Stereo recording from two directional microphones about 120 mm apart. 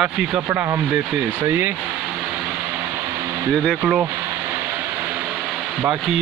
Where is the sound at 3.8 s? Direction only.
10° right (ahead or behind).